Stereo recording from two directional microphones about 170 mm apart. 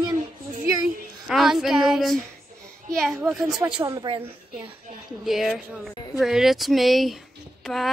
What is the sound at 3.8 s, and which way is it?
Speech, 20° right (ahead or behind).